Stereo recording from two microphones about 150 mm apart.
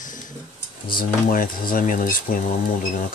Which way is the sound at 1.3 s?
70° left (ahead or behind).